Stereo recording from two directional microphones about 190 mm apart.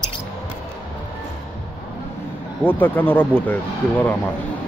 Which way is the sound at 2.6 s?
10° left (ahead or behind).